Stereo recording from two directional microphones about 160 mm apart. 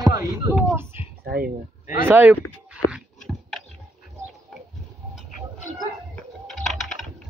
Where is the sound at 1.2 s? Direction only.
70° right (ahead or behind).